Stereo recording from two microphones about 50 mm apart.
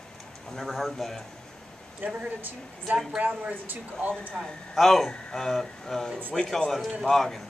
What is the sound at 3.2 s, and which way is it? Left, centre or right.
Speech, right.